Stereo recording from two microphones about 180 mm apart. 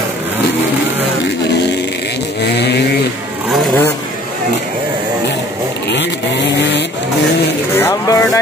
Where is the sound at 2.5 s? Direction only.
65° left (ahead or behind).